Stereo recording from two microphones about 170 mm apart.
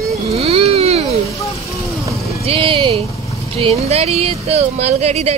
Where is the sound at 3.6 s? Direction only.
35° right (ahead or behind).